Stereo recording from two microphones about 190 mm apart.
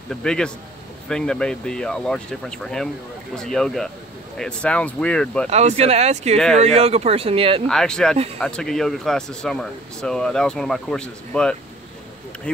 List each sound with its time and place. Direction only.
0.1 s speech: 5° left (ahead or behind)
5.5 s speech: 35° right (ahead or behind)
6.3 s speech: centre (ahead or behind)
6.6 s speech: 35° right (ahead or behind)
7.6 s speech: 5° left (ahead or behind)